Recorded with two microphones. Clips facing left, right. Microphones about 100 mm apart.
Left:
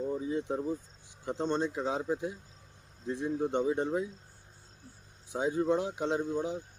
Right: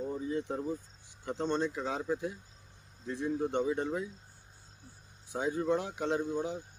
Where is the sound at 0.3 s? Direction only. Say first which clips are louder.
Even; 15° left (ahead or behind).